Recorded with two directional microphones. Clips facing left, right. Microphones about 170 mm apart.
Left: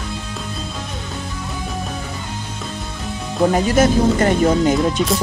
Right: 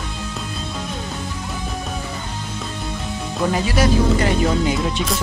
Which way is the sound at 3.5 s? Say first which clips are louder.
Left 3 dB; 45° left (ahead or behind).